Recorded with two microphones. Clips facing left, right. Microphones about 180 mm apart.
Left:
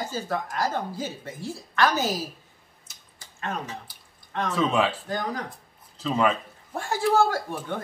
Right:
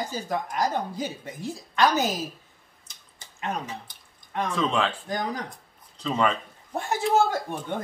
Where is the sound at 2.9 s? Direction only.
5° left (ahead or behind).